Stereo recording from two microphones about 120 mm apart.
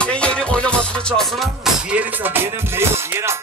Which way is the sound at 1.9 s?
15° right (ahead or behind).